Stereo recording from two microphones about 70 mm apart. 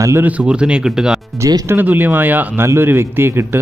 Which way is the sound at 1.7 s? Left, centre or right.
Right.